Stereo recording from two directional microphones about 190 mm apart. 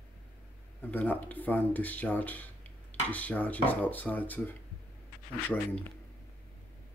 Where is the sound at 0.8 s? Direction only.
10° left (ahead or behind).